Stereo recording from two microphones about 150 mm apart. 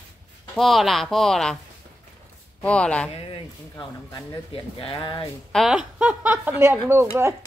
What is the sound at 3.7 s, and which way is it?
Speech, 20° left (ahead or behind).